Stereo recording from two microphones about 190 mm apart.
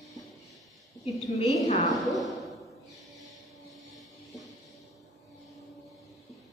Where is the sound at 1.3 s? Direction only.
40° left (ahead or behind).